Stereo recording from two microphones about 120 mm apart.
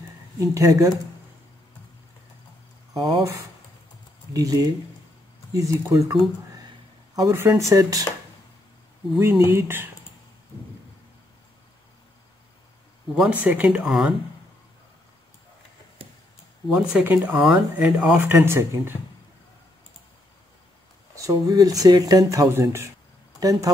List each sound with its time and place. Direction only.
0.4 s speech: 25° right (ahead or behind)
2.9 s speech: 40° right (ahead or behind)
4.3 s speech: 30° right (ahead or behind)
7.2 s speech: 20° right (ahead or behind)
9.2 s speech: 20° right (ahead or behind)
13.1 s speech: 10° right (ahead or behind)
16.0 s a sound: 55° right (ahead or behind)
17.0 s speech: 15° right (ahead or behind)
17.3 s speech: 5° right (ahead or behind)
18.3 s speech: 20° right (ahead or behind)
21.2 s speech: 30° right (ahead or behind)